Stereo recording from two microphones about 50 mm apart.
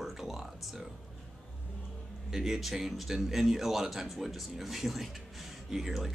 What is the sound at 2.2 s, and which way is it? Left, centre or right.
Speech, centre.